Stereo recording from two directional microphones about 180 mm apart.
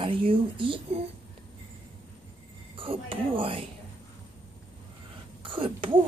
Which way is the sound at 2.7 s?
30° right (ahead or behind).